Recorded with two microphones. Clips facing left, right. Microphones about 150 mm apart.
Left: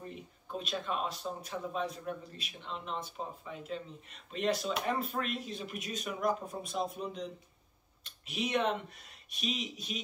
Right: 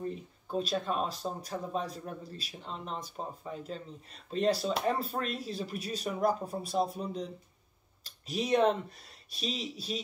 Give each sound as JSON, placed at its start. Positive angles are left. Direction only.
{"t": 0.5, "sound": "speech", "side_deg": -35}